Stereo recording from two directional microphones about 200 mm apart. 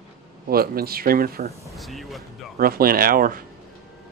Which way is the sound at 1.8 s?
Centre (ahead or behind).